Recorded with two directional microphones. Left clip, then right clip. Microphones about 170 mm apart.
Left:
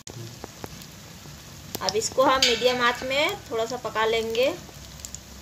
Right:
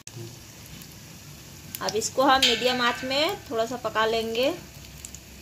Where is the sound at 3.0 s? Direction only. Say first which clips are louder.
Left 1 dB; 30° right (ahead or behind).